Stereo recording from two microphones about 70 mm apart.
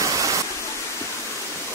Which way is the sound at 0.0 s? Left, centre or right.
Right.